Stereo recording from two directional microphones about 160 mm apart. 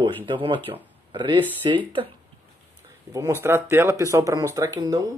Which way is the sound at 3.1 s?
15° right (ahead or behind).